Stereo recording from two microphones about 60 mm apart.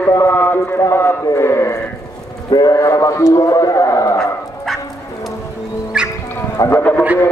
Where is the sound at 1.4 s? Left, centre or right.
Left.